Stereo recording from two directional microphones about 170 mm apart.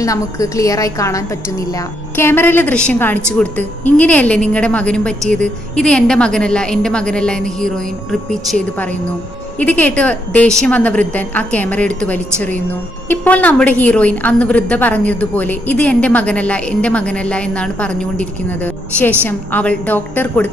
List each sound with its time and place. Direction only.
0.0 s a woman's voice: 20° left (ahead or behind)